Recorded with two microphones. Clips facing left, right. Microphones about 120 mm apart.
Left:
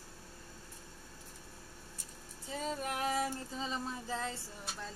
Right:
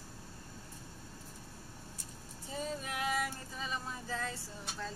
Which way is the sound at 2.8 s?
40° left (ahead or behind).